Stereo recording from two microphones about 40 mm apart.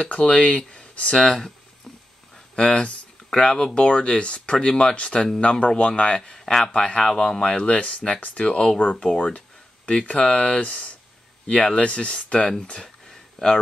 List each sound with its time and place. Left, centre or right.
0.0 s speech: left
0.6 s speech: centre
2.3 s a sound: left
3.3 s speech: centre
3.7 s speech: left
6.3 s a man's voice: centre
6.7 s speech: left
7.2 s speech: centre
7.4 s speech: left
9.8 s speech: left
12.8 s a sound: centre